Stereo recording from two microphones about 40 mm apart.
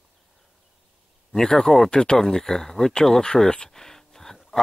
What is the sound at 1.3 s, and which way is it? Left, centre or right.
Speech, centre.